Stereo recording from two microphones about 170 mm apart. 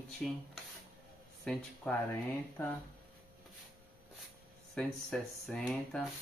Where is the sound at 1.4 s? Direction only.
5° left (ahead or behind).